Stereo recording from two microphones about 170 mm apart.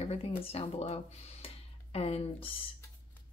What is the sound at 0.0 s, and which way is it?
Speech, 35° left (ahead or behind).